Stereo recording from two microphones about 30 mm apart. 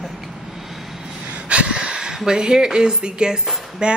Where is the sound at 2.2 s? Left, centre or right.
Right.